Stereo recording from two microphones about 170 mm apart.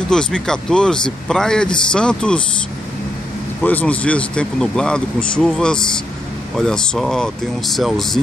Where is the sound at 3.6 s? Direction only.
10° left (ahead or behind).